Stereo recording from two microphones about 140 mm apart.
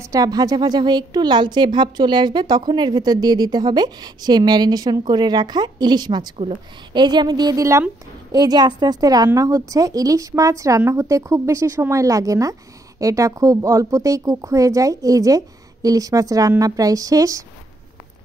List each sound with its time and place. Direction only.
0.0 s a woman's voice: 25° right (ahead or behind)
6.3 s a woman's voice: 45° right (ahead or behind)
6.9 s a woman's voice: 30° right (ahead or behind)